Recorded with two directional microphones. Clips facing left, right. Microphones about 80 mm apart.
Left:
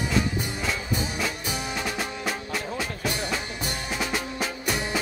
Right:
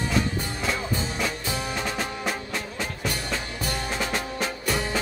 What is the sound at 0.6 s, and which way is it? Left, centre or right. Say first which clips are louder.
Music: right 2 dB; centre.